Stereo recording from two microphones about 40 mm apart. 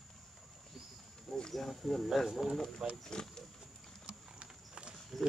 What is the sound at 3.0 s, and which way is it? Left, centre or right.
Speech, centre.